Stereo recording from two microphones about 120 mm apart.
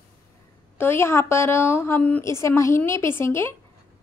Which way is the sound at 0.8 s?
20° left (ahead or behind).